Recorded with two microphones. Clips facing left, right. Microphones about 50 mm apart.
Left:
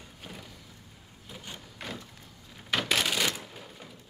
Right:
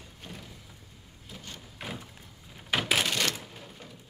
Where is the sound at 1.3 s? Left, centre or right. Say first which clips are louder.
Left 1 dB; centre.